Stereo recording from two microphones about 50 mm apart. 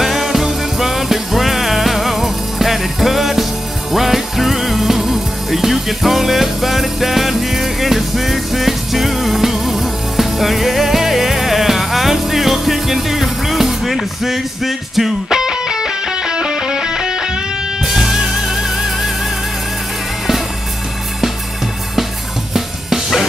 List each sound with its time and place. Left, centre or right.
0.0 s music: centre